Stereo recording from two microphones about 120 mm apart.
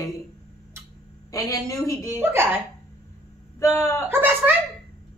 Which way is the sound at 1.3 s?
25° left (ahead or behind).